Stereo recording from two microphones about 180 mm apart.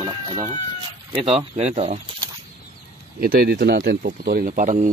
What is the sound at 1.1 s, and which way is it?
Speech, 35° right (ahead or behind).